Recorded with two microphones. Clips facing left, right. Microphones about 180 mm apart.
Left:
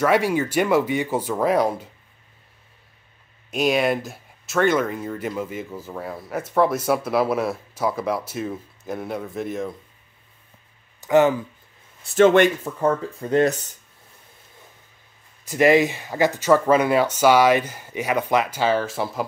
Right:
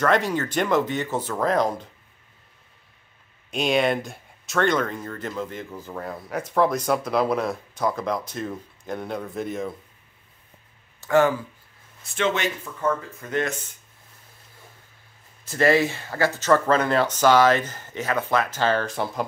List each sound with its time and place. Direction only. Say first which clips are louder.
0.0 s speech: left 3 dB; 10° left (ahead or behind)
3.4 s speech: left 1 dB; 5° left (ahead or behind)
11.0 s speech: left 2 dB; 20° left (ahead or behind)
12.2 s speech: left 11 dB; 50° left (ahead or behind)
12.6 s speech: left 4 dB; 35° left (ahead or behind)
15.4 s speech: left 3 dB; 15° left (ahead or behind)